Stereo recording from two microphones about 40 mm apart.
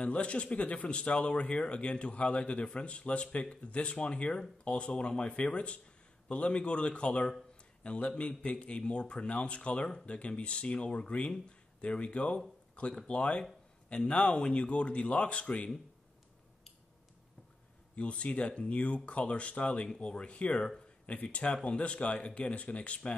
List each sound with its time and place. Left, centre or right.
0.0 s a man's voice: left
17.9 s speech: left